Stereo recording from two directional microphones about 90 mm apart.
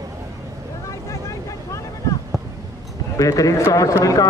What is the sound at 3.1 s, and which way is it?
Speech, 40° left (ahead or behind).